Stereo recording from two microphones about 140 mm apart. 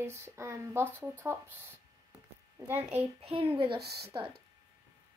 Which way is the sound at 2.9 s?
45° right (ahead or behind).